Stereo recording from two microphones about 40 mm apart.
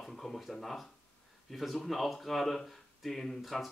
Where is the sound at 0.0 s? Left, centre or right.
Centre.